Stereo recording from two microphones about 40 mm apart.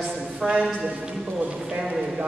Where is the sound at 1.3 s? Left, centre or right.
Right.